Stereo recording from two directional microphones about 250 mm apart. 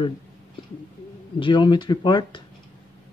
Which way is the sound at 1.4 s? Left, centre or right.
Centre.